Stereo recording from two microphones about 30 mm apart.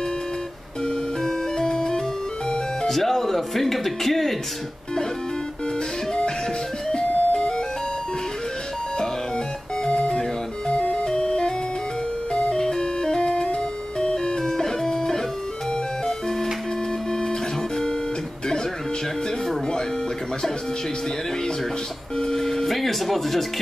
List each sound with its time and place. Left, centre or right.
1.2 s music: left
2.9 s speech: centre
6.9 s music: left
9.8 s music: left
11.1 s music: left
12.5 s music: centre
22.3 s a sound: centre
22.8 s music: centre